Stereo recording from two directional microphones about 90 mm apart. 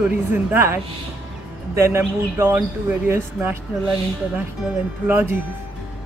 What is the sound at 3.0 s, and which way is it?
Speech, 20° right (ahead or behind).